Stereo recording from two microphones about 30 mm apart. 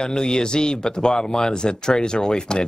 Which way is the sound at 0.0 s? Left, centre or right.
Left.